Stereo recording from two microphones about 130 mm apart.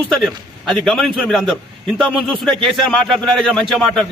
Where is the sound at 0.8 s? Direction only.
Centre (ahead or behind).